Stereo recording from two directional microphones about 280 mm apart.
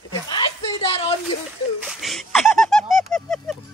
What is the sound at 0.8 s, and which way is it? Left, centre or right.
Speech, centre.